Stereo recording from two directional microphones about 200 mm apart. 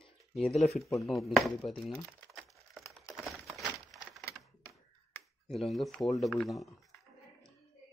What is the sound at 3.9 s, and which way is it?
Crack, centre (ahead or behind).